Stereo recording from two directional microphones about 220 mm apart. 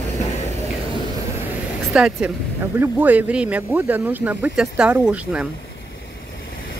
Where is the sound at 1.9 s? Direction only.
5° right (ahead or behind).